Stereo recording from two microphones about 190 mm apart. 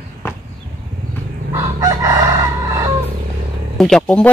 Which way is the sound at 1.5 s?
15° right (ahead or behind).